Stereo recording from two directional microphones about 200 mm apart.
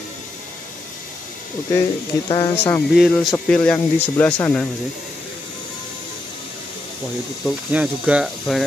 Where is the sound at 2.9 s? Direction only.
Centre (ahead or behind).